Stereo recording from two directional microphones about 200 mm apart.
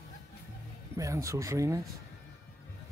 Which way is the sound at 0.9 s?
15° right (ahead or behind).